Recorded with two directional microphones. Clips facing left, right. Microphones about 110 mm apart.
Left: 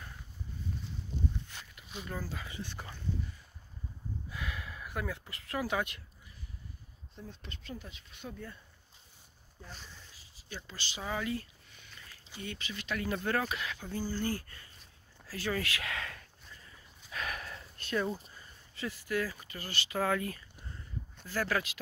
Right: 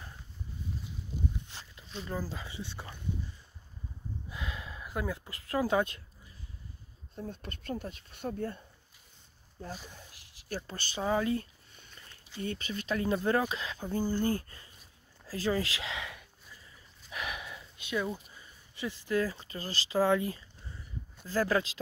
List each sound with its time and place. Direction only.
1.5 s walk: 25° right (ahead or behind)
2.0 s speech: 20° right (ahead or behind)
4.3 s a sound: 25° right (ahead or behind)
7.2 s speech: 50° right (ahead or behind)
10.5 s speech: 50° right (ahead or behind)
11.0 s a sound: 30° right (ahead or behind)
12.4 s speech: 40° right (ahead or behind)
13.8 s speech: 20° right (ahead or behind)
15.3 s dog: 25° right (ahead or behind); by 18.2 s 5° right (ahead or behind)
18.3 s speech: 20° right (ahead or behind)